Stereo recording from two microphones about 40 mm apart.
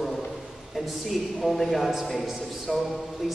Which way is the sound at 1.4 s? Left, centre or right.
Centre.